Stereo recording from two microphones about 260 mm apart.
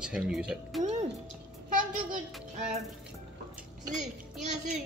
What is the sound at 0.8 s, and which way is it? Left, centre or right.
Music, right.